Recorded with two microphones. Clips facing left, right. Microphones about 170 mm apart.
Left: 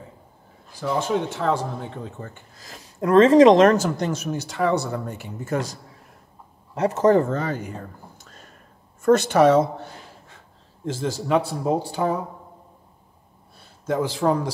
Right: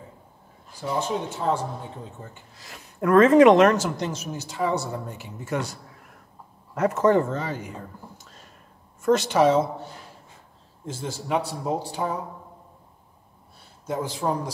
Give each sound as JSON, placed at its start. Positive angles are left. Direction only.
{"t": 0.7, "sound": "speech", "side_deg": 75}
{"t": 3.0, "sound": "speech", "side_deg": 30}
{"t": 6.8, "sound": "speech", "side_deg": 35}
{"t": 10.9, "sound": "speech", "side_deg": 80}
{"t": 13.8, "sound": "speech", "side_deg": 85}